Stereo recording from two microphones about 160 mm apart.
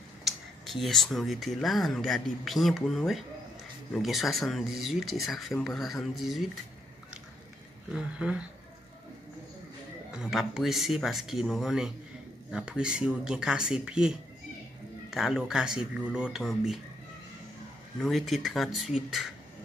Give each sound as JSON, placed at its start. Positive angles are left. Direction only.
{"t": 0.2, "sound": "speech", "side_deg": 0}
{"t": 7.9, "sound": "speech", "side_deg": -5}
{"t": 10.1, "sound": "speech", "side_deg": -5}
{"t": 18.0, "sound": "speech", "side_deg": 0}